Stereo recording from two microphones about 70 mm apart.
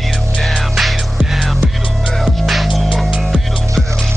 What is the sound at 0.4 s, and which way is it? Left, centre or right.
Music, centre.